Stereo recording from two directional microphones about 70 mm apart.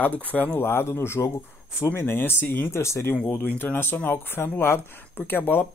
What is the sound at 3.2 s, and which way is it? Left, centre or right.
Speech, left.